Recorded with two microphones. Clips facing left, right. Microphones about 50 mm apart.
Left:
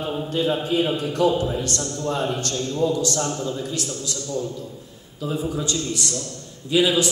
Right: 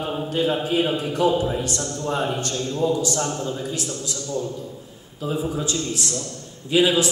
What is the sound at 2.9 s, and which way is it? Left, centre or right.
Speech, right.